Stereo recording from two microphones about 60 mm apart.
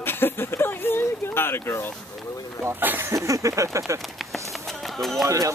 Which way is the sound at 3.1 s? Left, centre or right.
Right.